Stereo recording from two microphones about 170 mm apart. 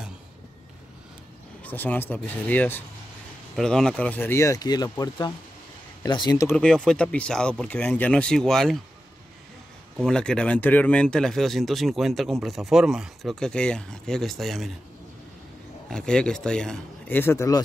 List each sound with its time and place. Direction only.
1.6 s speech: 10° left (ahead or behind)
6.5 s speech: 5° left (ahead or behind)
10.0 s speech: 5° left (ahead or behind)
15.9 s speech: 5° left (ahead or behind)